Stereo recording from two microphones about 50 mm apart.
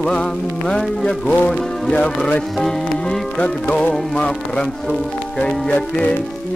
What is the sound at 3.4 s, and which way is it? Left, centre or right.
Music, left.